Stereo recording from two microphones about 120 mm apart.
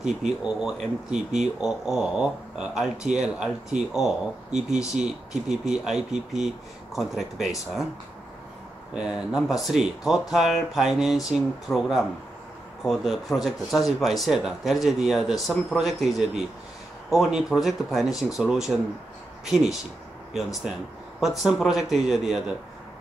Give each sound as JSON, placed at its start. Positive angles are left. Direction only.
{"t": 0.4, "sound": "speech", "side_deg": -5}
{"t": 4.5, "sound": "speech", "side_deg": -75}
{"t": 4.9, "sound": "speech", "side_deg": -5}
{"t": 8.9, "sound": "speech", "side_deg": -5}